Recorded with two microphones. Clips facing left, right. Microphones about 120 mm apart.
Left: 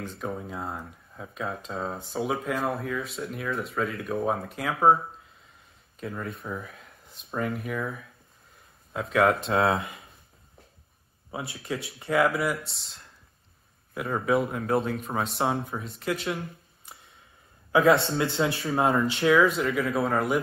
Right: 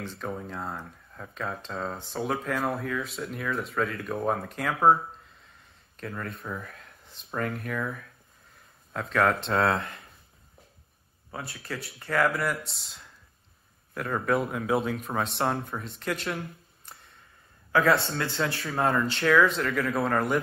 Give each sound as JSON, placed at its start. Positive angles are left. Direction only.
{"t": 0.0, "sound": "speech", "side_deg": 0}
{"t": 5.9, "sound": "speech", "side_deg": 5}
{"t": 11.5, "sound": "speech", "side_deg": 15}
{"t": 11.8, "sound": "speech", "side_deg": 0}
{"t": 17.7, "sound": "speech", "side_deg": 25}
{"t": 19.3, "sound": "speech", "side_deg": 5}